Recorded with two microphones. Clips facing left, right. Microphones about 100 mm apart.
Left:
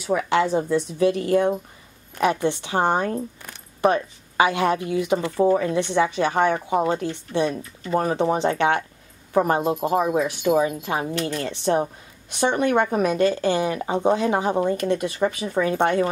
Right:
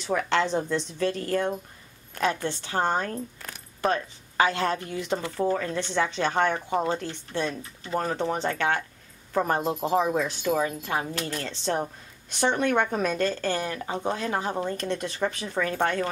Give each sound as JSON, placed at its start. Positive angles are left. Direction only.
{"t": 0.0, "sound": "speech", "side_deg": 10}
{"t": 5.2, "sound": "speech", "side_deg": 20}